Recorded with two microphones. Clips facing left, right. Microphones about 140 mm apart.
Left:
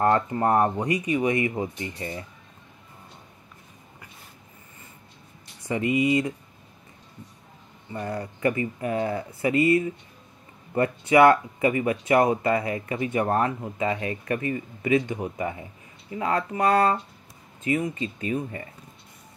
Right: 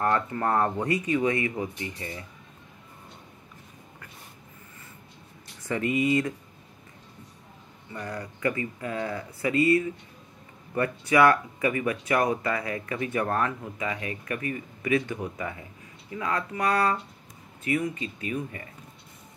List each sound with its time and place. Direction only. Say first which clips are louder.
0.0 s speech: left 4 dB; 25° left (ahead or behind)
5.7 s speech: left 2 dB; 15° left (ahead or behind)
7.9 s speech: left 4 dB; 25° left (ahead or behind)